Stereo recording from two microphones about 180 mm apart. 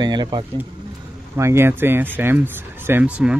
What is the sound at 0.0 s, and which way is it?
Speech, 25° right (ahead or behind).